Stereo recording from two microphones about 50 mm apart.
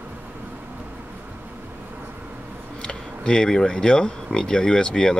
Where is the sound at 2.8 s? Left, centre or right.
Centre.